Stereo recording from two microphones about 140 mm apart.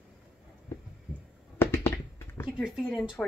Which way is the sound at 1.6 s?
15° left (ahead or behind).